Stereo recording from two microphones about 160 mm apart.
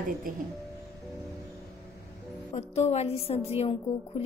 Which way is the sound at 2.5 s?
40° left (ahead or behind).